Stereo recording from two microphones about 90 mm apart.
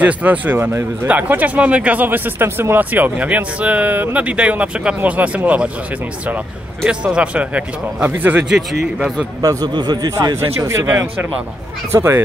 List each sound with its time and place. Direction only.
0.0 s speech: 15° right (ahead or behind)
6.9 s speech: 10° right (ahead or behind)
8.5 s speech: 5° right (ahead or behind)
9.4 s a man's voice: 45° right (ahead or behind)
10.6 s speech: 35° right (ahead or behind)